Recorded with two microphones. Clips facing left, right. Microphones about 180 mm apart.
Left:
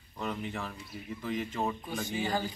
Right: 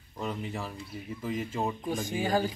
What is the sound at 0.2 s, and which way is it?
A man's voice, 5° right (ahead or behind).